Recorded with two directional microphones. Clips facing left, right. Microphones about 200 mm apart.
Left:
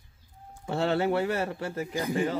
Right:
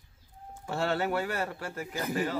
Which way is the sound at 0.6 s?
25° left (ahead or behind).